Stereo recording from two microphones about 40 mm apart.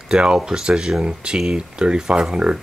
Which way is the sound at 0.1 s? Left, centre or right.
Right.